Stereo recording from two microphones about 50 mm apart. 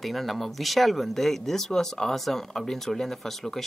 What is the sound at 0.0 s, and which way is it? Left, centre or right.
Speech, centre.